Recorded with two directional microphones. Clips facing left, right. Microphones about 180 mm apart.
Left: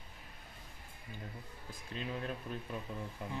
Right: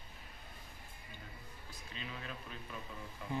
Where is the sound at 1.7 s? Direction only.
50° left (ahead or behind).